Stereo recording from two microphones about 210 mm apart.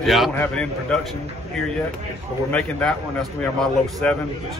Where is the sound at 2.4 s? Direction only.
5° left (ahead or behind).